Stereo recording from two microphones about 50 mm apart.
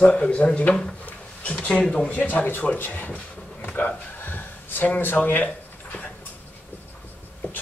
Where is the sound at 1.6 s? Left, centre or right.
Centre.